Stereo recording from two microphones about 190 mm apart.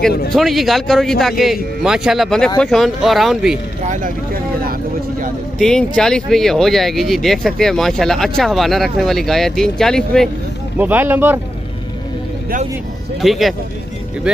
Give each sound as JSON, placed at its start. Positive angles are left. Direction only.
{"t": 0.3, "sound": "speech", "side_deg": 0}
{"t": 3.8, "sound": "speech", "side_deg": -45}
{"t": 5.6, "sound": "speech", "side_deg": 5}
{"t": 10.8, "sound": "speech", "side_deg": -10}
{"t": 13.2, "sound": "speech", "side_deg": 0}